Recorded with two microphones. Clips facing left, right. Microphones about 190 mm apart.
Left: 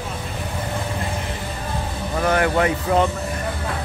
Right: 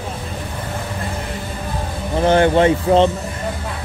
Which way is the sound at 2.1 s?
30° right (ahead or behind).